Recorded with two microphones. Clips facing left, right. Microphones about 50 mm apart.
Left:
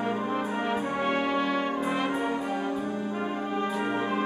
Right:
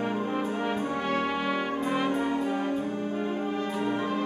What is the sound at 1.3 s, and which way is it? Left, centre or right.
Brass instrument, centre.